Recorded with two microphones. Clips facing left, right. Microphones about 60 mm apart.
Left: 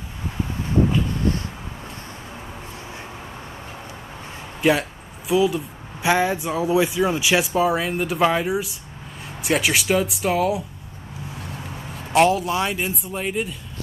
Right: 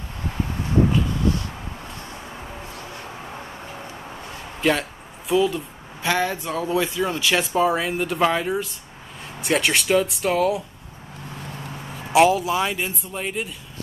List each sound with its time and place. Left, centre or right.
4.6 s speech: centre
12.1 s speech: centre